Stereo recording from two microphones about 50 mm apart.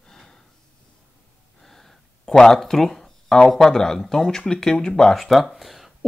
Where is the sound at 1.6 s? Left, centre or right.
Centre.